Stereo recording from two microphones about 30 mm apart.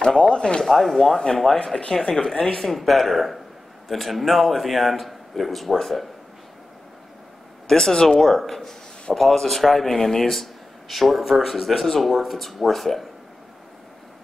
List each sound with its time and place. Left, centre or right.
0.2 s speech: left
0.7 s speech: centre
1.1 s speech: left
2.0 s speech: centre
2.7 s speech: centre
7.6 s speech: centre
8.2 s speech: centre